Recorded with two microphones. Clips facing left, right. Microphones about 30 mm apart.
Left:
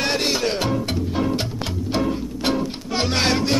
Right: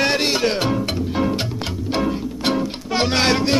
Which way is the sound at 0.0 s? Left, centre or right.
Centre.